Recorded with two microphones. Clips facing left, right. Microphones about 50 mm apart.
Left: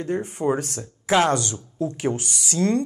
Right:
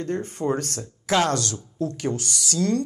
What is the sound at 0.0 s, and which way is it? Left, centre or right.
A woman's voice, centre.